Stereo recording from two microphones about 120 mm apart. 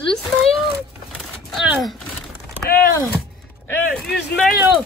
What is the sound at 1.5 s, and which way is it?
Speech, centre (ahead or behind).